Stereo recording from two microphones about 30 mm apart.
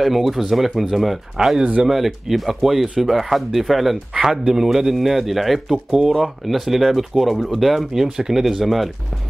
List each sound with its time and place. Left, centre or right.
0.0 s speech: centre
1.3 s speech: centre
4.1 s speech: centre
5.9 s speech: right
6.2 s speech: centre